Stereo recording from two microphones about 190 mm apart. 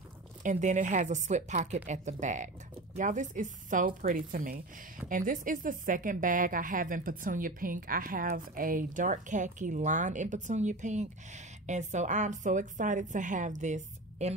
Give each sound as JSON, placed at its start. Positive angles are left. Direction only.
{"t": 0.4, "sound": "a woman's voice", "side_deg": -40}